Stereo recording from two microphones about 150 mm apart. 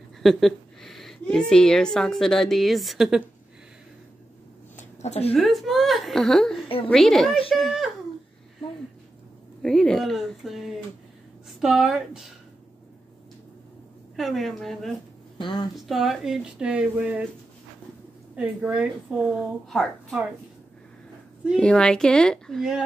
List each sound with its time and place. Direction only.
0.2 s a child's voice: centre (ahead or behind)
5.0 s speech: 45° left (ahead or behind)
5.3 s a woman's voice: centre (ahead or behind)
9.6 s a woman's voice: 5° left (ahead or behind)
14.1 s a woman's voice: centre (ahead or behind)
15.3 s a woman's voice: 30° left (ahead or behind)
15.7 s a woman's voice: centre (ahead or behind)
18.3 s a woman's voice: 10° right (ahead or behind)
21.5 s a woman's voice: 5° left (ahead or behind)